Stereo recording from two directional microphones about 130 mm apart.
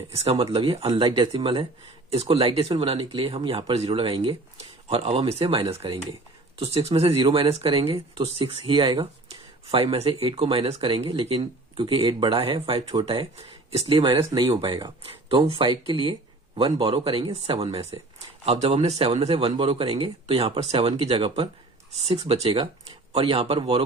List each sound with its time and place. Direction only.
0.2 s a man's voice: 45° right (ahead or behind)